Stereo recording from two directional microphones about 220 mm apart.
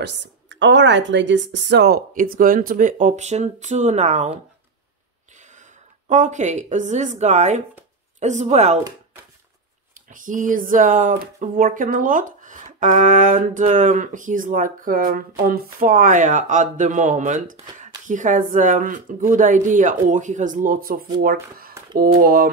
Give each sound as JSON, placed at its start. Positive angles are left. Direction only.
{"t": 0.0, "sound": "speech", "side_deg": -55}
{"t": 5.6, "sound": "a woman's voice", "side_deg": -35}
{"t": 10.0, "sound": "speech", "side_deg": -35}